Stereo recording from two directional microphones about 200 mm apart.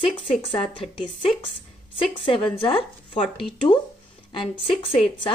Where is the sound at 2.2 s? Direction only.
25° left (ahead or behind).